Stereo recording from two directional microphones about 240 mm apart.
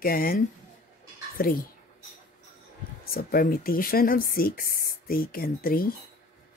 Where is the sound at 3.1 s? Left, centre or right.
Left.